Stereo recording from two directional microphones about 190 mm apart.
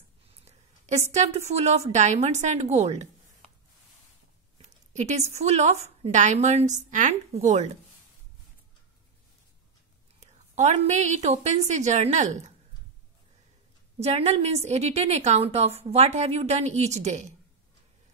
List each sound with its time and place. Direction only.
0.5 s a sound: 35° right (ahead or behind)
1.1 s a woman's voice: 35° right (ahead or behind)
4.6 s a woman's voice: 35° right (ahead or behind)
10.2 s a woman's voice: 35° right (ahead or behind)
13.9 s a woman's voice: 35° right (ahead or behind)